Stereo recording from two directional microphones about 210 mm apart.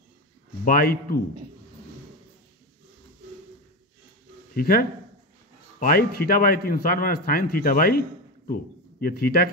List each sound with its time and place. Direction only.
0.7 s a man's voice: 45° left (ahead or behind)
4.6 s a man's voice: 45° left (ahead or behind)
9.0 s a man's voice: 45° left (ahead or behind)